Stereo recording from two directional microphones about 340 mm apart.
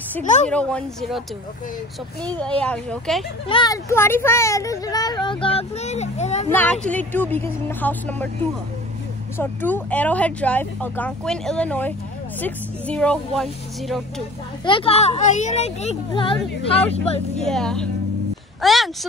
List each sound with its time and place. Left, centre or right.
0.2 s a woman's voice: left
0.5 s speech: centre
2.2 s speech: centre
3.4 s speech: centre
6.5 s speech: centre
9.4 s speech: centre
14.6 s speech: centre
17.4 s speech: centre